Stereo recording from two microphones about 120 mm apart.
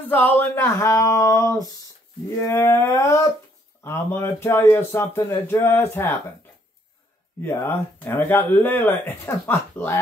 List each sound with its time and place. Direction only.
0.1 s speech: 15° left (ahead or behind)
7.4 s speech: 20° left (ahead or behind)